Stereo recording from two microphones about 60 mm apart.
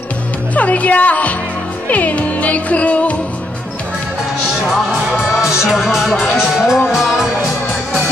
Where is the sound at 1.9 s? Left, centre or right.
Left.